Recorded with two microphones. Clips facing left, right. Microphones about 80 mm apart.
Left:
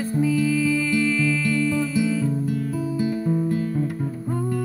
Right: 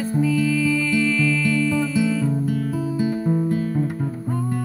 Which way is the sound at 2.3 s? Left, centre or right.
Right.